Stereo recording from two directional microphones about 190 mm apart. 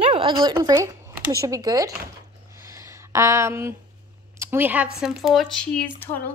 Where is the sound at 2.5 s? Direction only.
15° right (ahead or behind).